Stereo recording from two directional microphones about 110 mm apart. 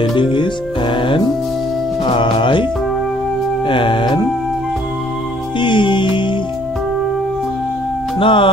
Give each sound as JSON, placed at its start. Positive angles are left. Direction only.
{"t": 0.0, "sound": "music", "side_deg": 50}
{"t": 2.0, "sound": "speech", "side_deg": 50}
{"t": 3.6, "sound": "music", "side_deg": 50}
{"t": 5.6, "sound": "music", "side_deg": 45}
{"t": 8.2, "sound": "music", "side_deg": 50}